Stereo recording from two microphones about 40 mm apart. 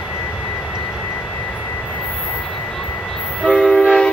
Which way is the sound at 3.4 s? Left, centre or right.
Left.